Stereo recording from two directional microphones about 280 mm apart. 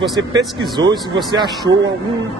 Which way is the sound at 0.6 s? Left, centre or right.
Centre.